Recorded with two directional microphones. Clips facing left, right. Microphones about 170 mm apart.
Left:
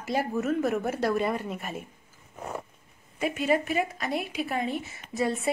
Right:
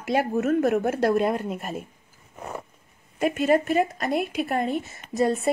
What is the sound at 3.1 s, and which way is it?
A woman's voice, 45° right (ahead or behind).